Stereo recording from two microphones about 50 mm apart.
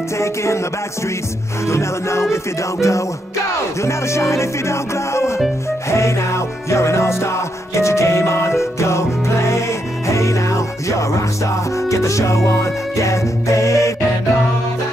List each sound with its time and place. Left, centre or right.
0.2 s music: left
1.7 s music: left
2.8 s music: left
3.8 s music: left